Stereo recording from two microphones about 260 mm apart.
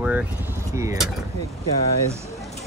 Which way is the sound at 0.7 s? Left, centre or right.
Centre.